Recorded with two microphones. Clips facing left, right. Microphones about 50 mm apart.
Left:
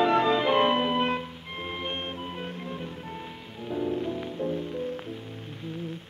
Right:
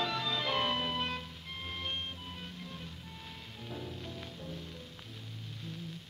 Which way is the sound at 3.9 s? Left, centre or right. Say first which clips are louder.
Left 15 dB; left.